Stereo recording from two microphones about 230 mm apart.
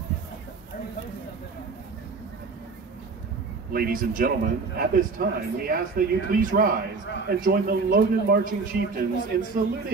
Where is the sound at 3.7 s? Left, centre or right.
Right.